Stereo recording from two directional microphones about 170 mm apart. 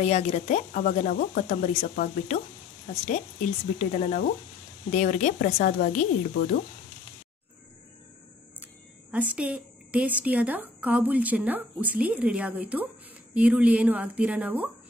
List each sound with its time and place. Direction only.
0.0 s speech: 40° left (ahead or behind)
1.3 s speech: 40° left (ahead or behind)
9.1 s a woman's voice: 10° right (ahead or behind)